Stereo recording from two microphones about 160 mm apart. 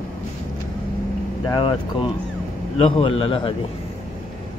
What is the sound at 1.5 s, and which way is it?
A man's voice, 30° left (ahead or behind).